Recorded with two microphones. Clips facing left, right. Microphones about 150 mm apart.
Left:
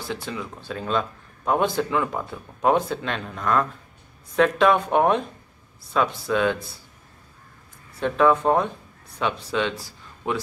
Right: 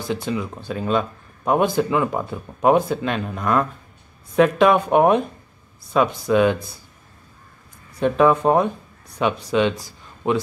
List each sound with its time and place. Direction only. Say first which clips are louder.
0.0 s speech: right 6 dB; 15° right (ahead or behind)
7.9 s speech: right 3 dB; 15° right (ahead or behind)